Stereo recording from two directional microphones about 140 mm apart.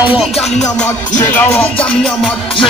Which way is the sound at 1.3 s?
10° left (ahead or behind).